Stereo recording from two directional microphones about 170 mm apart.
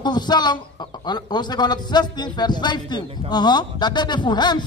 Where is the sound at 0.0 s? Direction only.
25° left (ahead or behind).